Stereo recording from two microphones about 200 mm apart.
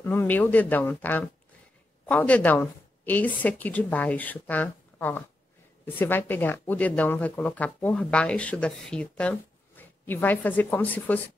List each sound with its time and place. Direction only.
0.0 s speech: 10° left (ahead or behind)